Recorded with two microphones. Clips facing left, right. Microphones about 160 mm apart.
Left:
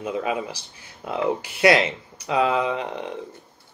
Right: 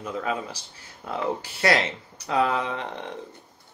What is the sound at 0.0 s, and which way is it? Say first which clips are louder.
Speech: left 3 dB; 15° left (ahead or behind).